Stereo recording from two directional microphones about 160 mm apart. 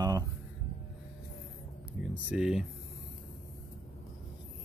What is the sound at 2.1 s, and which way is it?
Speech, 5° right (ahead or behind).